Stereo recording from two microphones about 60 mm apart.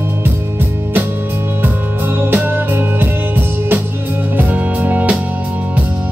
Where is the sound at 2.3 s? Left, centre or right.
Right.